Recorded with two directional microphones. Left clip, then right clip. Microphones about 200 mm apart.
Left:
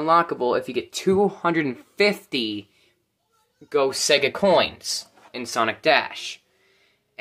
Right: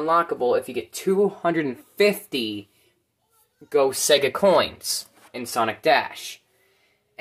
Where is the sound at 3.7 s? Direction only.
5° right (ahead or behind).